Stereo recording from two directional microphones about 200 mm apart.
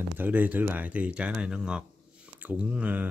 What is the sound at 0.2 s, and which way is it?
Speech, 10° right (ahead or behind).